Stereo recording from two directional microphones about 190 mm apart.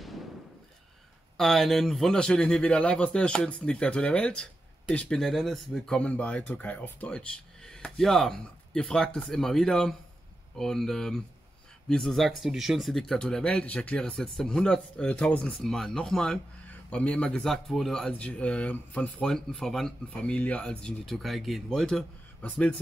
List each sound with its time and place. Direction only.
1.3 s a man's voice: centre (ahead or behind)